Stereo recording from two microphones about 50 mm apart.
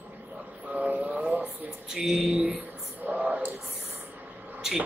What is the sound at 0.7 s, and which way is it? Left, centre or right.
Vehicle, right.